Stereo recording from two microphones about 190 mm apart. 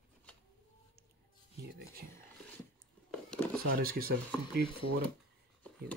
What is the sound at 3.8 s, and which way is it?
Speech, 50° right (ahead or behind).